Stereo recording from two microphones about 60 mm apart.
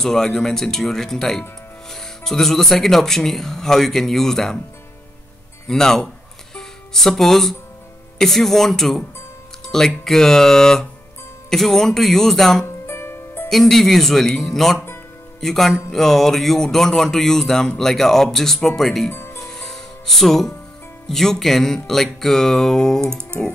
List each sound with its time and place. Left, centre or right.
0.0 s speech: centre
5.7 s speech: centre
6.5 s music: centre
8.2 s speech: centre
12.8 s music: left
13.5 s speech: centre
19.0 s music: left
19.4 s music: centre
21.1 s speech: centre